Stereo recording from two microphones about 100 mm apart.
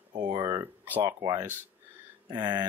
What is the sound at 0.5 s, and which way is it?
Speech, 25° right (ahead or behind).